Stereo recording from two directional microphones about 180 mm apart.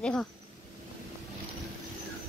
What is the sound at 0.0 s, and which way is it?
Speech, 5° left (ahead or behind).